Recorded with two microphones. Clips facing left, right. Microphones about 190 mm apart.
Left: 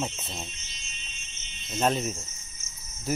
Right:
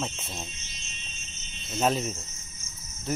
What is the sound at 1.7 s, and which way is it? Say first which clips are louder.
Speech: even; centre (ahead or behind).